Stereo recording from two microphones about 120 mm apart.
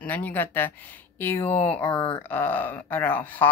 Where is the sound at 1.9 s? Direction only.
45° left (ahead or behind).